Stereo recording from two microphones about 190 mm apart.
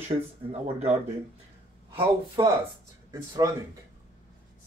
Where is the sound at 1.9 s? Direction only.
30° right (ahead or behind).